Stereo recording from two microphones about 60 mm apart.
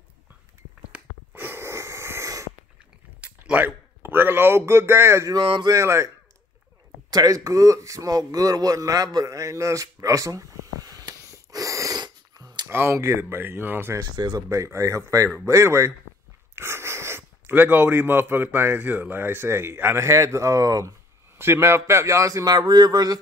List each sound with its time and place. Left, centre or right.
1.3 s wheeze: right
3.4 s a man's voice: right
7.1 s a man's voice: right
12.6 s a sound: right
12.9 s speech: right
13.2 s a man's voice: right
14.5 s a man's voice: right
16.5 s a sound: right
17.5 s a man's voice: right
21.4 s a man's voice: right